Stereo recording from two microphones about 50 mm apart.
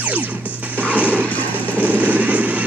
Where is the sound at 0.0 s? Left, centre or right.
Right.